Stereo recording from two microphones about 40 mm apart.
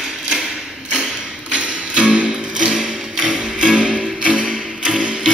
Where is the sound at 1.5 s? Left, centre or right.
Right.